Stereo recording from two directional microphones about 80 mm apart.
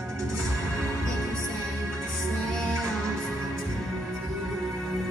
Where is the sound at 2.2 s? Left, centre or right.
Centre.